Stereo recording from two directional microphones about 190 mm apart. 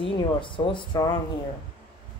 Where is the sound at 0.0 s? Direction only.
25° left (ahead or behind).